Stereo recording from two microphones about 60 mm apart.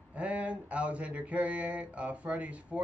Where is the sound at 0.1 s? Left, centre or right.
Right.